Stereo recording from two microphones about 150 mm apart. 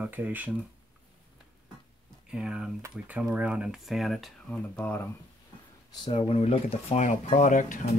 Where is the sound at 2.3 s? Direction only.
5° right (ahead or behind); by 5.1 s 15° left (ahead or behind).